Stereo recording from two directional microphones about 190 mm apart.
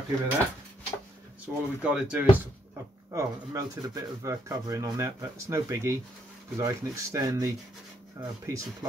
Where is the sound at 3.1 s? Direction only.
15° right (ahead or behind).